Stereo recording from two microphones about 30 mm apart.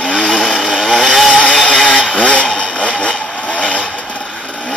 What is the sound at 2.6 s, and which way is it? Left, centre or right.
Vehicle, left.